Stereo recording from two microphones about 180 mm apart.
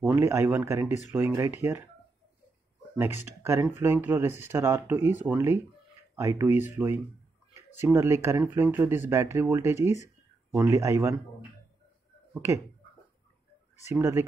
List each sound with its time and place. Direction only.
0.0 s speech: 15° right (ahead or behind)
3.6 s speech: 10° right (ahead or behind)
12.4 s speech: 15° right (ahead or behind)
13.9 s speech: 15° right (ahead or behind)